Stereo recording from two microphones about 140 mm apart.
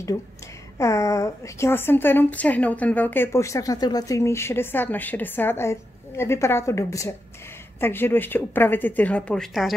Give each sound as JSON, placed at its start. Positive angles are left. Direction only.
{"t": 0.7, "sound": "a woman's voice", "side_deg": 20}